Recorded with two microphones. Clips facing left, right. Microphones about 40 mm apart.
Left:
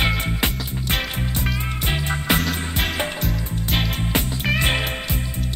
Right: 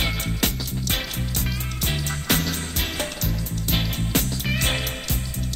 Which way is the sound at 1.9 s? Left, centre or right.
Left.